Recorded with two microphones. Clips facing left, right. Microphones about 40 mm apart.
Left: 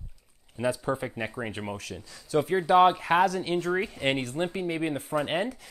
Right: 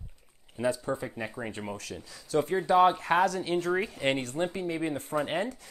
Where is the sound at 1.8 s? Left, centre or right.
Centre.